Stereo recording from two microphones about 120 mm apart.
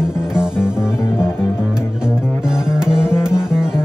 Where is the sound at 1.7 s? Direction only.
5° right (ahead or behind).